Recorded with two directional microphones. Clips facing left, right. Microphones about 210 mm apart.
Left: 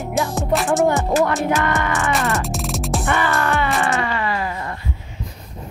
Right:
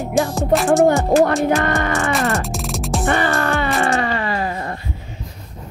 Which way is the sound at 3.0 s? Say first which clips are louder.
Right 3 dB; 35° right (ahead or behind).